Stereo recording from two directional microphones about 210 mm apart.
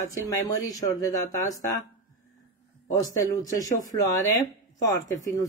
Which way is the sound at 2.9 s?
15° left (ahead or behind).